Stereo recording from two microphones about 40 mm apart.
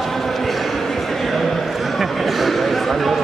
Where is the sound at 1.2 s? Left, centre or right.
Centre.